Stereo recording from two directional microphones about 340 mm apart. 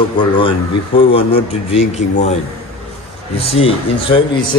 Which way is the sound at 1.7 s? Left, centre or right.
Centre.